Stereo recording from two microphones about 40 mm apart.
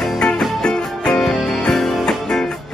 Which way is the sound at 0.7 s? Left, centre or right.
Left.